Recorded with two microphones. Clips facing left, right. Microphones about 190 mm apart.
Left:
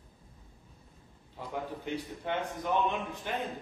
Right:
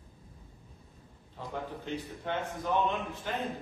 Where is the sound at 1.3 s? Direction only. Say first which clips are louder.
Left 1 dB; 10° left (ahead or behind).